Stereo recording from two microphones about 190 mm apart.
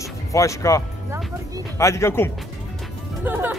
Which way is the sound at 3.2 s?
10° right (ahead or behind).